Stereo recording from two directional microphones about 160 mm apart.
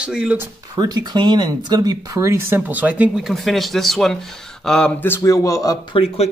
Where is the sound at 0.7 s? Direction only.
25° right (ahead or behind); by 5.7 s 20° left (ahead or behind).